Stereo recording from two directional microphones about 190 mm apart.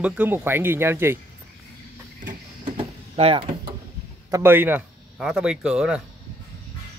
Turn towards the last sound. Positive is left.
turn(degrees=-5)  # may be behind; listen again after turning